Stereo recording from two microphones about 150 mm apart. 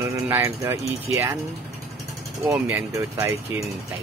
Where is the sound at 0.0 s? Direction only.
15° right (ahead or behind).